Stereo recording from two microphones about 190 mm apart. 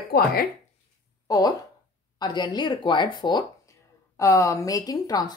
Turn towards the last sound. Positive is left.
turn(degrees=20)  # may be behind; listen again after turning